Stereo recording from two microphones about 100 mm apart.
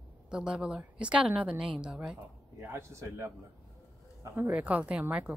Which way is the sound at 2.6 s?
25° right (ahead or behind).